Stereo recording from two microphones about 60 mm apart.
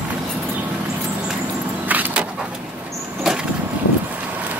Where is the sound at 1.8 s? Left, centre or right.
Right.